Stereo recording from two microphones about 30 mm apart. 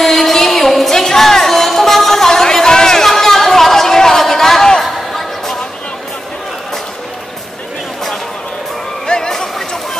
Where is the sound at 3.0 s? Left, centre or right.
Centre.